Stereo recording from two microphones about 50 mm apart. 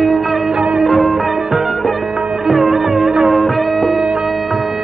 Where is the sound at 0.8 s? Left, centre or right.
Centre.